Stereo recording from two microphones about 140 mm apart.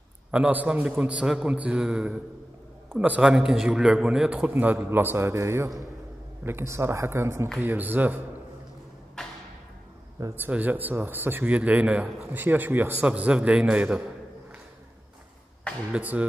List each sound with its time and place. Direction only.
0.3 s speech: 10° right (ahead or behind)
9.2 s a sound: 5° left (ahead or behind)
10.2 s speech: 15° right (ahead or behind)
15.9 s speech: 10° right (ahead or behind)